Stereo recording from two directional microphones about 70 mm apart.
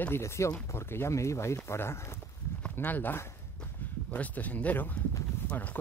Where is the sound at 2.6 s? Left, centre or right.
Left.